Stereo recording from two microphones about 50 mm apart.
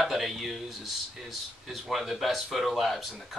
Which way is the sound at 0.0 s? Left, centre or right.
Centre.